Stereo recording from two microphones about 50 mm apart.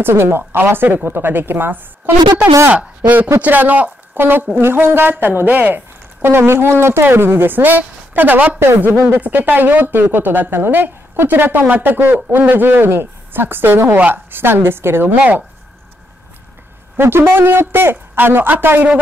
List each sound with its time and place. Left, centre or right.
0.0 s a woman's voice: right
2.7 s speech: right
4.2 s a woman's voice: right
6.2 s a woman's voice: right
8.5 s a woman's voice: right
9.0 s a woman's voice: right
13.9 s speech: right
14.3 s a woman's voice: right
16.9 s a woman's voice: right